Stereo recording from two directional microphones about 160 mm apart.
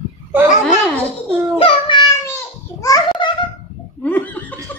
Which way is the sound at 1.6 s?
30° left (ahead or behind).